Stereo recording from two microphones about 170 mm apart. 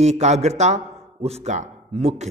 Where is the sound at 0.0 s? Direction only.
40° right (ahead or behind).